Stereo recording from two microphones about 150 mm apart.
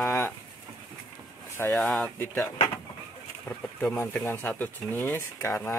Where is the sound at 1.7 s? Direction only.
5° left (ahead or behind).